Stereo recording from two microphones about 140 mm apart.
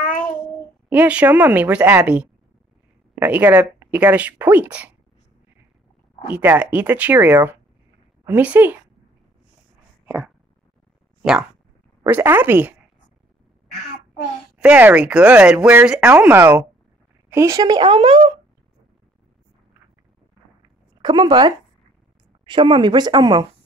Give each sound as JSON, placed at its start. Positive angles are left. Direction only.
{"t": 0.8, "sound": "speech", "side_deg": -10}
{"t": 6.3, "sound": "speech", "side_deg": -10}
{"t": 10.0, "sound": "a sound", "side_deg": -5}
{"t": 12.1, "sound": "speech", "side_deg": -15}
{"t": 14.6, "sound": "speech", "side_deg": -10}
{"t": 21.0, "sound": "speech", "side_deg": -30}